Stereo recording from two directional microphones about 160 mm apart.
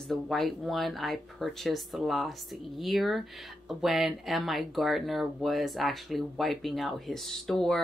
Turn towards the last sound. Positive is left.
turn(degrees=0)  # may be behind; listen again after turning